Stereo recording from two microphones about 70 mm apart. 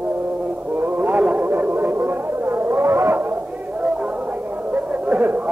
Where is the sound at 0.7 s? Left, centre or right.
Right.